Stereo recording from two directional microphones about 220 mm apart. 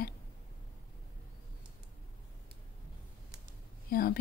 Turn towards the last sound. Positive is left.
turn(degrees=45)  # may be behind; listen again after turning